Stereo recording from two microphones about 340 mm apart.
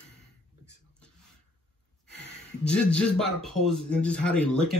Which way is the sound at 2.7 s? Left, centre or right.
Centre.